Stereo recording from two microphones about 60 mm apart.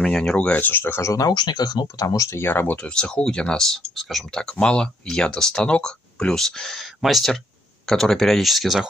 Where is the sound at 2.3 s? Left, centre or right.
Left.